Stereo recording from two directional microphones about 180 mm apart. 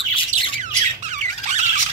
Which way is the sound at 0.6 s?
40° right (ahead or behind).